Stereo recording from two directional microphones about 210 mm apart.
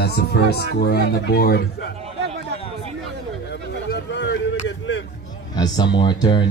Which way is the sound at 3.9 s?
55° left (ahead or behind).